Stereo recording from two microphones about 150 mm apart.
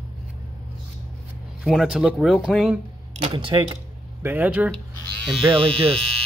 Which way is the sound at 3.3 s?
35° right (ahead or behind).